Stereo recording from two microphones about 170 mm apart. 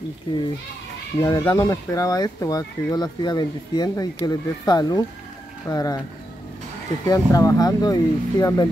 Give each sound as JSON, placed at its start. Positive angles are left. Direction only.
{"t": 1.2, "sound": "speech", "side_deg": 25}
{"t": 7.1, "sound": "speech", "side_deg": 20}